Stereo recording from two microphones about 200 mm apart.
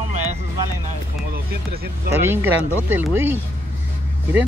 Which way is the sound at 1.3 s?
50° right (ahead or behind).